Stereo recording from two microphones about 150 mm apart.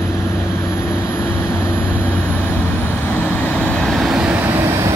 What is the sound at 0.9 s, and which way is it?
Vehicle, 15° left (ahead or behind).